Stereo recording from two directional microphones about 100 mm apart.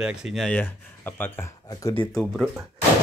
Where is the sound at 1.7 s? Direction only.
35° left (ahead or behind).